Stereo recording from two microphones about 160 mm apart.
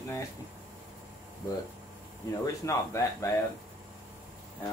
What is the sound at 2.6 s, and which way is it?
Speech, 20° left (ahead or behind).